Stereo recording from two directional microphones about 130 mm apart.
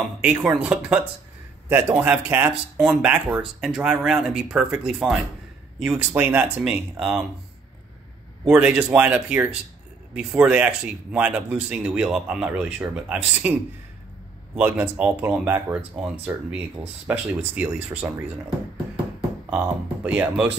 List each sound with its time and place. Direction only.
0.2 s speech: 10° right (ahead or behind)
8.5 s speech: 10° right (ahead or behind)
19.5 s speech: 10° right (ahead or behind)